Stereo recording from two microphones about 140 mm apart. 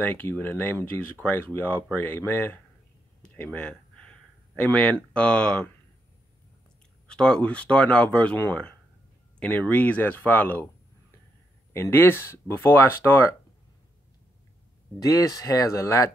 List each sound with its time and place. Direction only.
0.0 s speech: 15° left (ahead or behind)
7.1 s speech: 5° left (ahead or behind)
11.7 s speech: 15° left (ahead or behind)
15.0 s speech: 25° left (ahead or behind)